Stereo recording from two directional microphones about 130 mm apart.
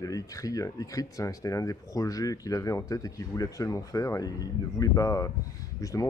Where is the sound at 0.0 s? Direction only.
25° left (ahead or behind).